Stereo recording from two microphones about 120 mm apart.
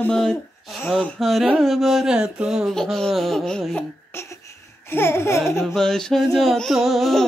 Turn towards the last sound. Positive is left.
turn(degrees=0)  # may be behind; listen again after turning